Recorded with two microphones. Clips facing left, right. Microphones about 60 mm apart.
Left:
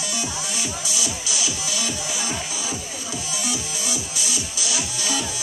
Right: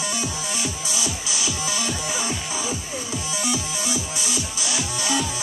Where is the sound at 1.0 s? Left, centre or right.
Right.